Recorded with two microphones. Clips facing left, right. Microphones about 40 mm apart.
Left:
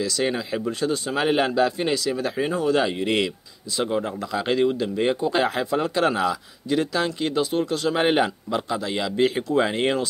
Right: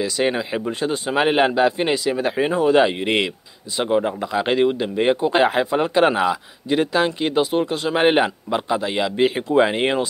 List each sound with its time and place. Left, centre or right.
0.0 s speech: right